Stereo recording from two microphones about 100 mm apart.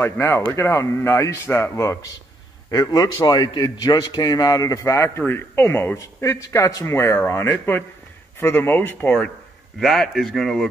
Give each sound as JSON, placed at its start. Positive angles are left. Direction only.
{"t": 0.0, "sound": "speech", "side_deg": 25}
{"t": 2.7, "sound": "a man's voice", "side_deg": 40}
{"t": 9.8, "sound": "speech", "side_deg": 5}